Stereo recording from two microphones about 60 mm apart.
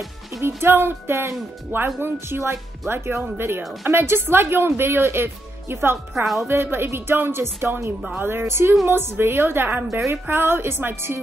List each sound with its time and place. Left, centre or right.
0.3 s speech: right
9.8 s speech: right